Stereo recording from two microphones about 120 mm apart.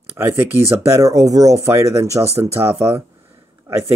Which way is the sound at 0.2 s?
20° right (ahead or behind).